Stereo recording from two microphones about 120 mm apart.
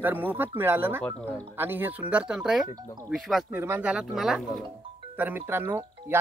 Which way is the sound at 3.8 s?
5° right (ahead or behind).